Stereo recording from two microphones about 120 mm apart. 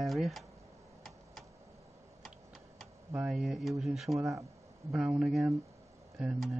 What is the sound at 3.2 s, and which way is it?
Speech, 5° right (ahead or behind).